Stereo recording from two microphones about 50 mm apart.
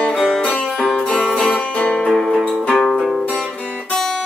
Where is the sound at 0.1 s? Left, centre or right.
Centre.